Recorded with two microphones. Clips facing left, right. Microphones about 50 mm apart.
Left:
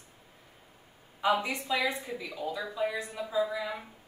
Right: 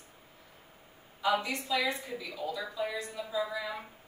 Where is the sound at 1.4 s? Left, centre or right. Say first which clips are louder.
Left 1 dB; left.